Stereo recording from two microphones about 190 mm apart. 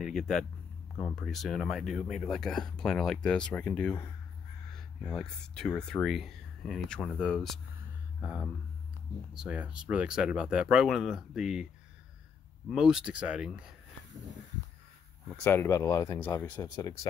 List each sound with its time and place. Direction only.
0.0 s speech: centre (ahead or behind)
12.6 s speech: 5° right (ahead or behind)
15.4 s speech: 15° left (ahead or behind)